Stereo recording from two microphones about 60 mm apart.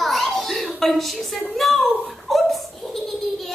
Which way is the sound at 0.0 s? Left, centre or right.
Centre.